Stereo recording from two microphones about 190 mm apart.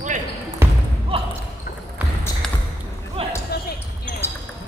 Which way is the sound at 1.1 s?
30° right (ahead or behind).